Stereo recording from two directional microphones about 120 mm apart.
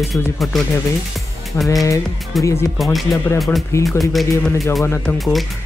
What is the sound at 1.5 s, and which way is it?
Speech, 15° left (ahead or behind).